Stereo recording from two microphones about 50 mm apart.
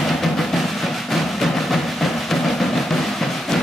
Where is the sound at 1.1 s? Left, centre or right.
Centre.